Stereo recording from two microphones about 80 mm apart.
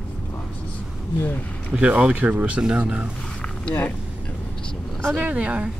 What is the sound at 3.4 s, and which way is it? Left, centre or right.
Mechanisms, centre.